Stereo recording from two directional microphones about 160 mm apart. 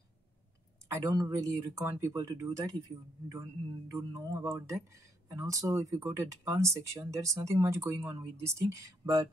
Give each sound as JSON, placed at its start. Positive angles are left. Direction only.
{"t": 0.8, "sound": "speech", "side_deg": -20}
{"t": 3.9, "sound": "speech", "side_deg": -20}